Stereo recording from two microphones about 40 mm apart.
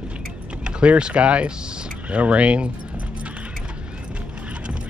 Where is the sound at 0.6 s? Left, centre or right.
Right.